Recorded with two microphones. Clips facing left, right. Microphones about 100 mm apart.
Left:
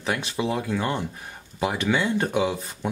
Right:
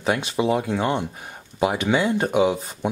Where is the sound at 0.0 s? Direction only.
20° right (ahead or behind).